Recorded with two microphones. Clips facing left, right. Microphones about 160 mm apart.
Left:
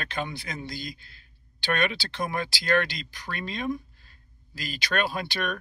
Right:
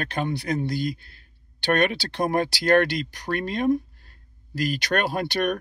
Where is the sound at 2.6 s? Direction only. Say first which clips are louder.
Right 6 dB; 60° right (ahead or behind).